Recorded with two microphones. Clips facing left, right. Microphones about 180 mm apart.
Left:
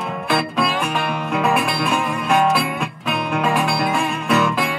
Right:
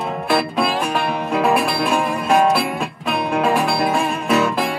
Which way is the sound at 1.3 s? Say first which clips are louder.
Right 2 dB; 35° right (ahead or behind).